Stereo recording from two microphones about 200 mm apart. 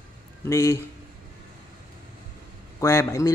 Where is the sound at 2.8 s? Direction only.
15° left (ahead or behind).